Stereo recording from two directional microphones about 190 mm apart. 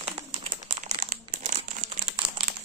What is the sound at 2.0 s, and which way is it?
Crumpling, 25° right (ahead or behind).